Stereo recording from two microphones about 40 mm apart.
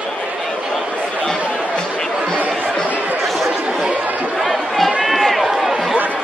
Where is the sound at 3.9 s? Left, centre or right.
Right.